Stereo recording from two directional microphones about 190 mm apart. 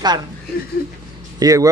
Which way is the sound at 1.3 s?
20° right (ahead or behind).